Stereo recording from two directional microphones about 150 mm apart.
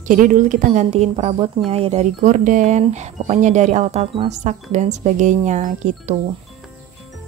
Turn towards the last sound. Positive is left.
turn(degrees=-55)  # may be behind; listen again after turning